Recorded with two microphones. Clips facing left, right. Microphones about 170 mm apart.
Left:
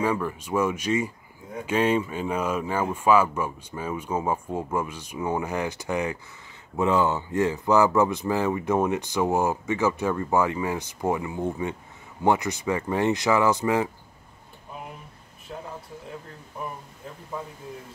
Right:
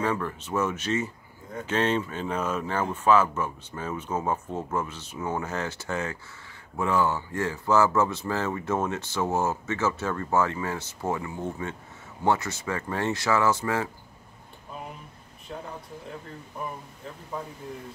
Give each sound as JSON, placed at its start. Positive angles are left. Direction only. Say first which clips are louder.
{"t": 0.0, "sound": "speech", "louder": "left 2 dB", "side_deg": 10}
{"t": 15.5, "sound": "speech", "louder": "even", "side_deg": 5}